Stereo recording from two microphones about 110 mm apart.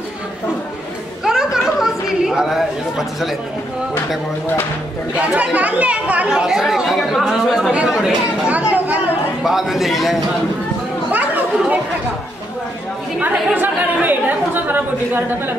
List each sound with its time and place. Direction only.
1.2 s chatter: 5° right (ahead or behind)
5.2 s speech: 10° right (ahead or behind)
9.4 s speech: 5° right (ahead or behind)
11.1 s chatter: 15° right (ahead or behind)
13.6 s a woman's voice: 15° right (ahead or behind)